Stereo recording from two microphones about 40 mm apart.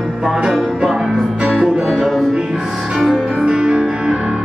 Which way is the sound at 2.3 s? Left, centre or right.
Centre.